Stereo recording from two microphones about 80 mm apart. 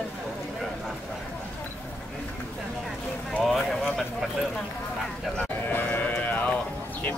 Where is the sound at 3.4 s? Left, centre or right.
Centre.